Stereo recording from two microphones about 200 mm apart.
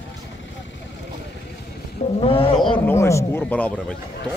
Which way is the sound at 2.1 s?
25° left (ahead or behind).